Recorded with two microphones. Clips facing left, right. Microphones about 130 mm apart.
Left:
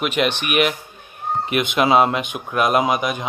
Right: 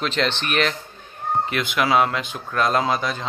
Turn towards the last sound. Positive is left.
turn(degrees=15)  # may be behind; listen again after turning